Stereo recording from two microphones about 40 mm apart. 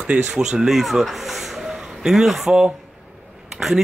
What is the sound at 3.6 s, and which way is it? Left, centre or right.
Speech, centre.